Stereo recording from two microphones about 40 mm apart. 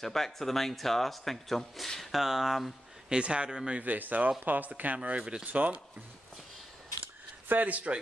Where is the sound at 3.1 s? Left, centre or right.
Right.